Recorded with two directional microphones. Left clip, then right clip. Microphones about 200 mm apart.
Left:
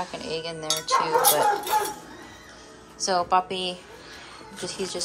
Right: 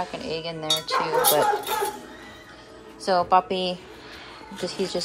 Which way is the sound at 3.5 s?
45° left (ahead or behind).